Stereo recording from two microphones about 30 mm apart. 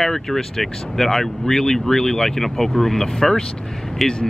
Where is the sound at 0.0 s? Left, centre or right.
Centre.